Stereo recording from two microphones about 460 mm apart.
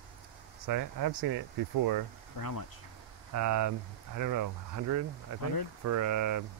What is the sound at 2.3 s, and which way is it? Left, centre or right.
Speech, left.